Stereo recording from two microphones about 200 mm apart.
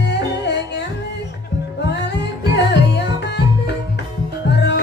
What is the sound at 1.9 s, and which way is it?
Music, 60° left (ahead or behind).